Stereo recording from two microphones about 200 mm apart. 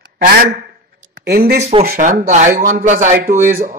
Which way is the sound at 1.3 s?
50° right (ahead or behind).